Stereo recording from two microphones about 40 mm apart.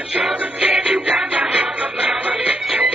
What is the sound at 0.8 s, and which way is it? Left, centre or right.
Music, right.